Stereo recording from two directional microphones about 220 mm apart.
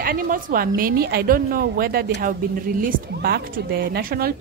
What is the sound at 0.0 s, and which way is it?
A woman's voice, 40° right (ahead or behind).